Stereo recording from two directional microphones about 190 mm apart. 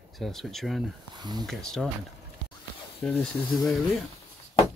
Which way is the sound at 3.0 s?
Centre (ahead or behind).